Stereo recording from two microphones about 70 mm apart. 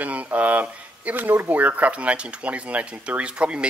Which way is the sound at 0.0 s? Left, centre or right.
Right.